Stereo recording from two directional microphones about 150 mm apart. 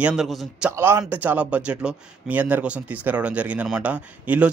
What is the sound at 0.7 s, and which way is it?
A man's voice, 15° right (ahead or behind).